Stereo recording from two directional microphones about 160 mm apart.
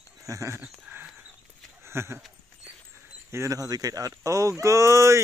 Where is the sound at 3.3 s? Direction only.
20° right (ahead or behind).